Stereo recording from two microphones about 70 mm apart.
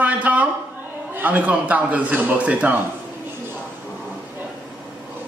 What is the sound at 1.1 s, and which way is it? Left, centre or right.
A man's voice, right.